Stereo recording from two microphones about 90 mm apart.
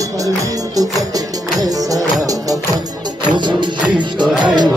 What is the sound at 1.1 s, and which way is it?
Music, 40° right (ahead or behind).